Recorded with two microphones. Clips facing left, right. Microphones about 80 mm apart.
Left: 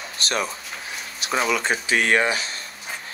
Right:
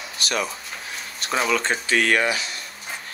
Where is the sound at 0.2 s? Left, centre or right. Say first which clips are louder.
Even; left.